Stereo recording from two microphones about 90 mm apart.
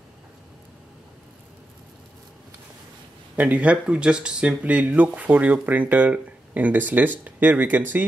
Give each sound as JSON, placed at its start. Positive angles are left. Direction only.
{"t": 3.3, "sound": "speech", "side_deg": -15}